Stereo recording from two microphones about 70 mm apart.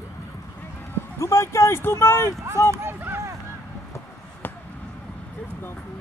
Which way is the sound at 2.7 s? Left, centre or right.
Right.